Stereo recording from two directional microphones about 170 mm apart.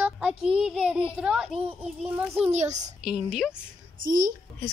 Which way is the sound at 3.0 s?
5° right (ahead or behind).